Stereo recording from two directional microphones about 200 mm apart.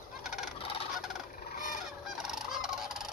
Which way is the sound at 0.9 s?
Centre (ahead or behind).